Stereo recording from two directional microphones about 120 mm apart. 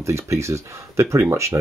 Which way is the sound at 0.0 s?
25° right (ahead or behind).